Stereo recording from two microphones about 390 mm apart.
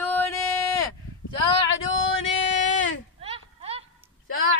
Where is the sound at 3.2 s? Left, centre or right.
Centre.